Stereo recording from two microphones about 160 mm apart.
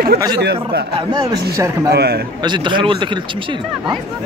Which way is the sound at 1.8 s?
90° right.